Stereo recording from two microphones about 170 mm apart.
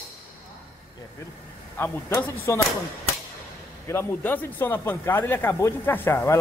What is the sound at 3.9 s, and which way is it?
Speech, 10° left (ahead or behind).